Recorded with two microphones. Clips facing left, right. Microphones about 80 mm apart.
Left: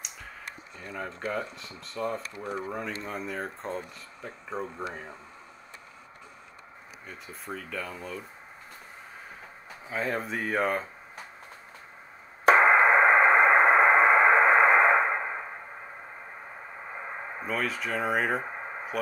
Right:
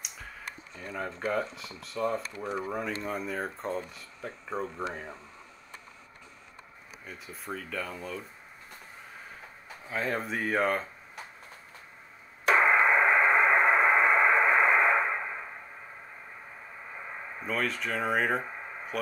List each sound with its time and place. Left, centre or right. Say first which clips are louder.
0.7 s speech: right 1 dB; centre
7.1 s speech: even; centre
9.8 s speech: left 1 dB; centre
12.4 s radio: left 4 dB; left
17.5 s speech: even; centre